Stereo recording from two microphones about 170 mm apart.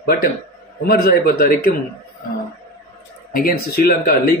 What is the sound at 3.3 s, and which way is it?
Speech, 60° left (ahead or behind).